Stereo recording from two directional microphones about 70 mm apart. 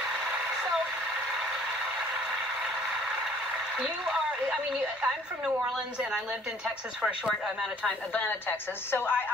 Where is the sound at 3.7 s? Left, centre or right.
Centre.